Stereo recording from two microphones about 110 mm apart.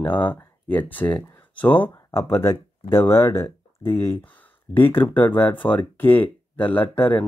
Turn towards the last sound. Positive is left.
turn(degrees=15)  # may be behind; listen again after turning